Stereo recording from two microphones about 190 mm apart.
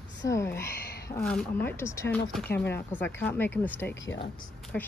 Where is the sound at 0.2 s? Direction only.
15° left (ahead or behind).